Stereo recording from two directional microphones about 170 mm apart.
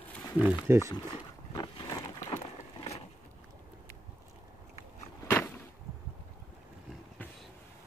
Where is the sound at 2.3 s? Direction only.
40° left (ahead or behind).